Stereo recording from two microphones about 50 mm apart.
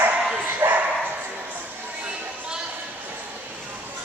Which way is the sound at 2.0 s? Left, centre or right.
Centre.